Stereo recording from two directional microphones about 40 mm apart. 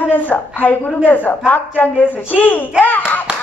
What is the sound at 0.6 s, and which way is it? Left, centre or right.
Speech, left.